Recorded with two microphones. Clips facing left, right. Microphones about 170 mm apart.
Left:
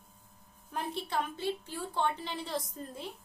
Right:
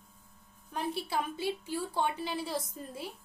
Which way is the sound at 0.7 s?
5° right (ahead or behind).